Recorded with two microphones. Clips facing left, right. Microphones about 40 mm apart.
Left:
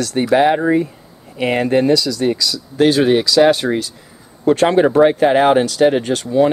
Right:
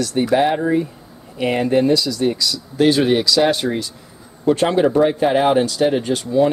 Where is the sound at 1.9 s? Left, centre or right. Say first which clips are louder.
Left 2 dB; left.